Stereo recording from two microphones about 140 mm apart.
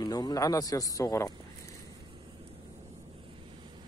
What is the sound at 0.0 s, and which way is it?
Speech, 30° left (ahead or behind).